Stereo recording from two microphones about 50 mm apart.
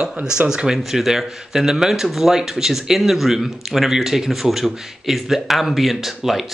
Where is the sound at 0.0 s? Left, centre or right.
Centre.